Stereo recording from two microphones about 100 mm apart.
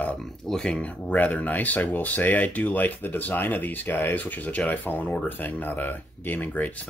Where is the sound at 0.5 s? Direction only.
10° left (ahead or behind).